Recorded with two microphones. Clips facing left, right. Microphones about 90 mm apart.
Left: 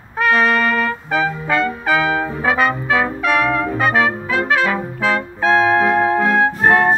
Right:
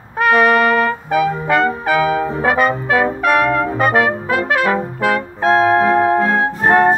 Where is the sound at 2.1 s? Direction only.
30° right (ahead or behind).